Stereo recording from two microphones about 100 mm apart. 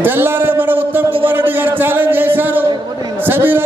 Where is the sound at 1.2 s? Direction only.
20° right (ahead or behind).